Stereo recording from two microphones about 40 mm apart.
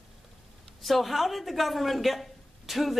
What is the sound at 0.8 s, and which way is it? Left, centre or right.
A woman's voice, centre.